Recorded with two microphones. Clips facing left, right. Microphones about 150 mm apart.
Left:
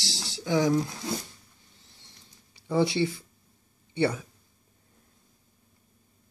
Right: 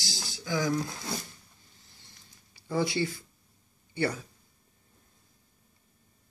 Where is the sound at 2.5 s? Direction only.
25° left (ahead or behind).